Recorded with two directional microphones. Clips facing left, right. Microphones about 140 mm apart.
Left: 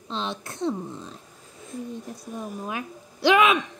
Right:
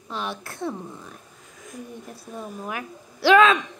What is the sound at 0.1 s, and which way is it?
A woman's voice, 20° left (ahead or behind).